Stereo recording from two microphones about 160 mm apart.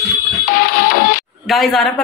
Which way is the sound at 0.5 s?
65° left (ahead or behind).